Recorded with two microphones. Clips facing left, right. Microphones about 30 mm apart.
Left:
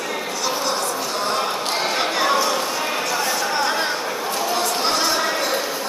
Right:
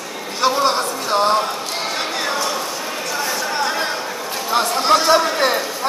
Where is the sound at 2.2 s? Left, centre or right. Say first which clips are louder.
Left 4 dB; centre.